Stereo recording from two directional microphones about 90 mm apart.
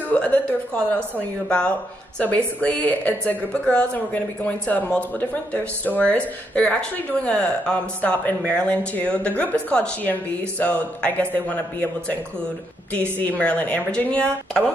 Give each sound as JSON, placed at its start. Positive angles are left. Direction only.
{"t": 0.1, "sound": "speech", "side_deg": 15}
{"t": 2.1, "sound": "speech", "side_deg": 15}